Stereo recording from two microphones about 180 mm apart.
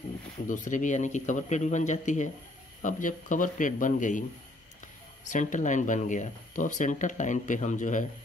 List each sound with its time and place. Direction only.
0.5 s speech: 45° left (ahead or behind)
5.2 s speech: 45° left (ahead or behind)